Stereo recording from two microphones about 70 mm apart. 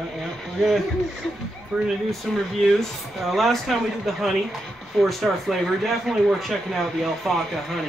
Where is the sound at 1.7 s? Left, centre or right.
Centre.